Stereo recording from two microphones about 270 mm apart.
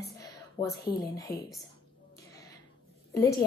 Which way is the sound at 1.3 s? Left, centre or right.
Left.